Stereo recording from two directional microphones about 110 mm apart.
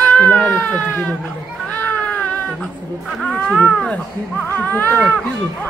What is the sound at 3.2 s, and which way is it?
Speech, 10° left (ahead or behind).